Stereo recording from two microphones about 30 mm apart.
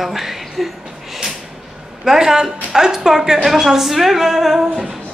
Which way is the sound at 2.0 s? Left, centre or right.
Centre.